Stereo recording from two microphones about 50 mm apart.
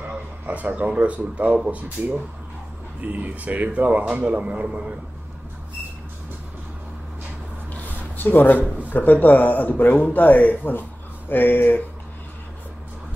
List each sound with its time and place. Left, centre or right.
0.0 s a man's voice: right
7.7 s a sound: left
8.9 s speech: left